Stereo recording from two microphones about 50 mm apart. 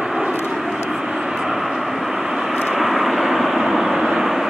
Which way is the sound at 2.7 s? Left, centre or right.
Centre.